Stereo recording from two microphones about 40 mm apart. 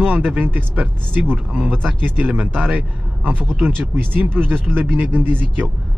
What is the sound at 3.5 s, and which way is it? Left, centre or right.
Speech, right.